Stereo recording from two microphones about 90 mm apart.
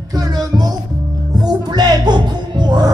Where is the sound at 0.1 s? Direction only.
40° right (ahead or behind).